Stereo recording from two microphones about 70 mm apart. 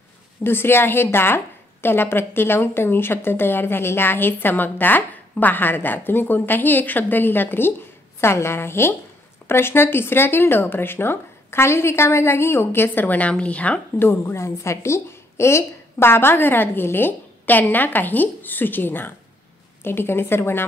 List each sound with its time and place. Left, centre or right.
0.4 s a woman's voice: left
13.9 s a woman's voice: left